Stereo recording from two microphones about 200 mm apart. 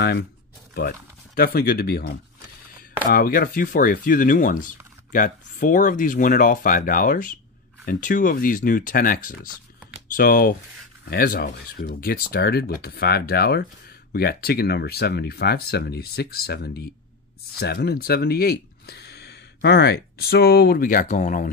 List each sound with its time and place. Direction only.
0.7 s speech: 50° left (ahead or behind)